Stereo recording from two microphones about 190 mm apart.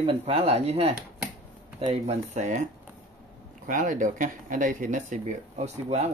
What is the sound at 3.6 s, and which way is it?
Speech, 45° right (ahead or behind).